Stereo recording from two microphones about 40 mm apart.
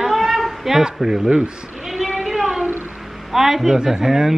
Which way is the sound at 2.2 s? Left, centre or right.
Centre.